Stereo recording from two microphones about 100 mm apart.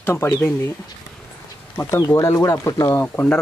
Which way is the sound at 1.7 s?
25° left (ahead or behind).